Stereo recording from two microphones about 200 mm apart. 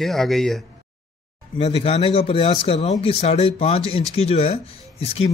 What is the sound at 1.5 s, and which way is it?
Speech, 30° left (ahead or behind).